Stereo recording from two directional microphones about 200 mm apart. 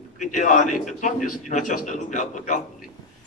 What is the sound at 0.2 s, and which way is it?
A man's voice, 40° left (ahead or behind).